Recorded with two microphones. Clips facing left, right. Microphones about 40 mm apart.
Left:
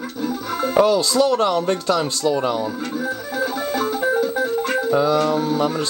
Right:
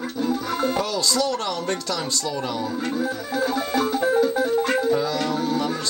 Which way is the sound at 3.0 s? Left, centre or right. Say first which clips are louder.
Left 2 dB; centre.